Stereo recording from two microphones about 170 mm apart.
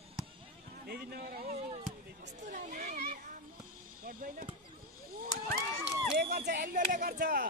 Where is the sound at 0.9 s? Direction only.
65° right (ahead or behind).